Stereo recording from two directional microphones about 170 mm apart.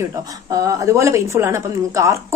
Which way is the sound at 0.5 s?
20° right (ahead or behind).